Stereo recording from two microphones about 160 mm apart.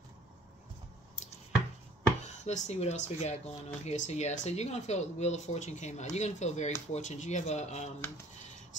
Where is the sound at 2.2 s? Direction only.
45° left (ahead or behind).